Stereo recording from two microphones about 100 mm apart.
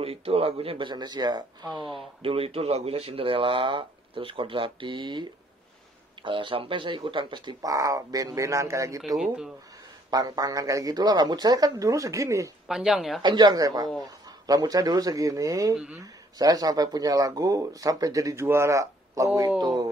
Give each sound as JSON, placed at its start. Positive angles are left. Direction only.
{"t": 0.0, "sound": "a man's voice", "side_deg": -75}
{"t": 0.8, "sound": "speech", "side_deg": -45}
{"t": 2.2, "sound": "speech", "side_deg": -70}
{"t": 6.2, "sound": "speech", "side_deg": -55}
{"t": 7.6, "sound": "speech", "side_deg": -35}
{"t": 10.1, "sound": "speech", "side_deg": -40}
{"t": 12.6, "sound": "speech", "side_deg": -5}
{"t": 13.2, "sound": "speech", "side_deg": -45}
{"t": 15.7, "sound": "speech", "side_deg": -10}
{"t": 16.0, "sound": "speech", "side_deg": -40}
{"t": 19.6, "sound": "speech", "side_deg": -45}